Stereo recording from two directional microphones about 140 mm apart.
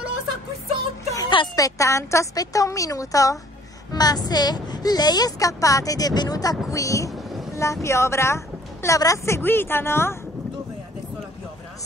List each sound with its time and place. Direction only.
1.1 s a woman's voice: 30° left (ahead or behind); by 10.1 s 15° left (ahead or behind)